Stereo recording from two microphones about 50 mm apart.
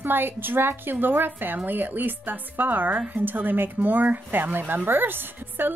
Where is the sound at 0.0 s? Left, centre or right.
Right.